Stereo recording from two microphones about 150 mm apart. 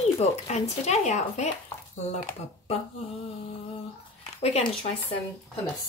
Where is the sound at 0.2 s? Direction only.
45° left (ahead or behind).